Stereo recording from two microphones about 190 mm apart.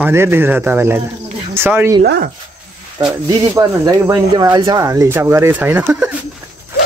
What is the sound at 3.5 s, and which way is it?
Speech, 15° right (ahead or behind).